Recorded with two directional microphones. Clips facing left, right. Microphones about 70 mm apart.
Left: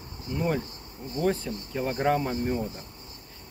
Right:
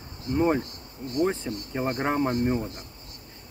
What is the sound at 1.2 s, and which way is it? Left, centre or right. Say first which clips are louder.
Speech: right 1 dB; right.